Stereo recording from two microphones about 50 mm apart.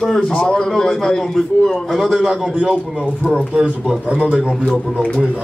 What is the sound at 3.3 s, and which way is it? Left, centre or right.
A man's voice, centre.